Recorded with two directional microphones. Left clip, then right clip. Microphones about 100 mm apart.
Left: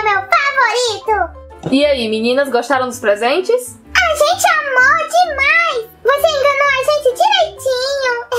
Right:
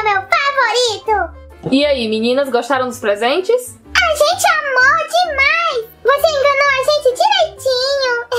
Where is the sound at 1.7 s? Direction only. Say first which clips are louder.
Left 1 dB; 5° right (ahead or behind).